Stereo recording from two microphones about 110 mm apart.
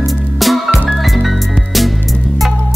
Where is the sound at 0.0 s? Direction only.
Centre (ahead or behind).